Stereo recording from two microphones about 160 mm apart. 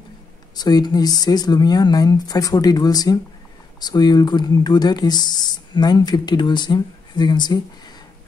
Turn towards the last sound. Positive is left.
turn(degrees=25)  # may be behind; listen again after turning